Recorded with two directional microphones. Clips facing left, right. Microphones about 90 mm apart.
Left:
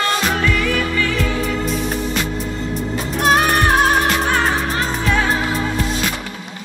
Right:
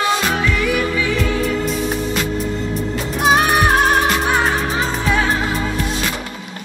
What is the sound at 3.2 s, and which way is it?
Music, centre (ahead or behind).